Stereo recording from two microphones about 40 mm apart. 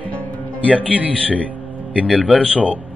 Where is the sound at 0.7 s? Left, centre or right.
Right.